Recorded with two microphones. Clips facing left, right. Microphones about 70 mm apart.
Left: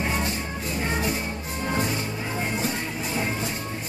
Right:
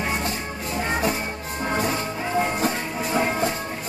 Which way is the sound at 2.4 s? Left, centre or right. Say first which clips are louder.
Right 5 dB; right.